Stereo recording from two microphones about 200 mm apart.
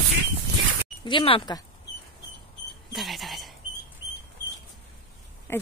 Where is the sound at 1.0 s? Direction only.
25° left (ahead or behind).